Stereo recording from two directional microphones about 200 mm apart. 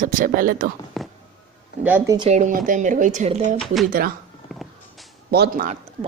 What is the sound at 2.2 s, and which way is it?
Speech, 35° right (ahead or behind).